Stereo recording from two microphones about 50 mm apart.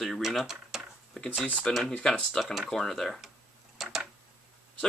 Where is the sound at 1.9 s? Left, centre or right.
Centre.